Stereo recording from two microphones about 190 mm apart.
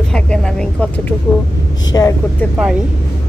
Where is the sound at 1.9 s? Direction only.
15° left (ahead or behind).